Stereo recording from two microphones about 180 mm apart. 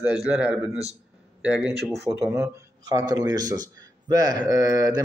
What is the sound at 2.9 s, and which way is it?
A man's voice, 20° right (ahead or behind).